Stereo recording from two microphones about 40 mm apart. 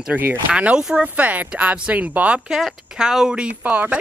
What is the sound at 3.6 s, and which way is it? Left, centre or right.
Speech, right.